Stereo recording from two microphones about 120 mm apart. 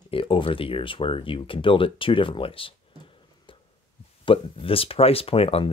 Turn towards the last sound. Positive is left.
turn(degrees=50)  # may be behind; listen again after turning